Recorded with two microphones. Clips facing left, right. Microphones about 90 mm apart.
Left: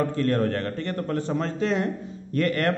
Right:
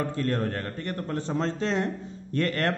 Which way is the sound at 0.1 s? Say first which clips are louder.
Left 4 dB; 20° right (ahead or behind).